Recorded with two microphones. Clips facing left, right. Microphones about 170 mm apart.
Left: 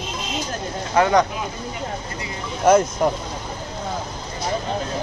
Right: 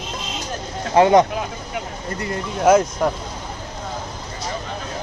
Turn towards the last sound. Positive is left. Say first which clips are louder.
# right 1 dB
turn(degrees=0)  # may be behind; listen again after turning